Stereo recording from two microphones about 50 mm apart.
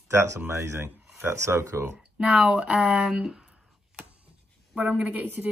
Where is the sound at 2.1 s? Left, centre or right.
Centre.